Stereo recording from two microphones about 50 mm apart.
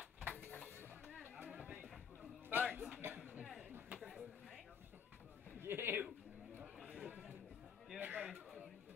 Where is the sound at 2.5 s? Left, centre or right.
Right.